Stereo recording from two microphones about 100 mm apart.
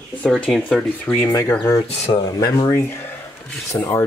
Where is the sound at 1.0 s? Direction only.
20° left (ahead or behind).